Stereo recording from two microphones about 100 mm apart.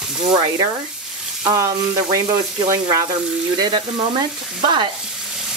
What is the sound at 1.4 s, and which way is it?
Frying, 35° right (ahead or behind).